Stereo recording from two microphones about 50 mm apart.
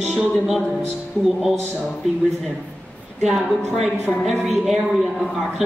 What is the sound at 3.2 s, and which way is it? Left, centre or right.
Speech, centre.